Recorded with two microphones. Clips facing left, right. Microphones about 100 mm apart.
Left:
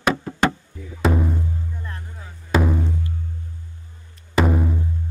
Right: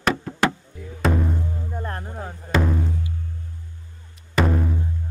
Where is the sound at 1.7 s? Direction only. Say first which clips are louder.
Right 6 dB; 45° right (ahead or behind).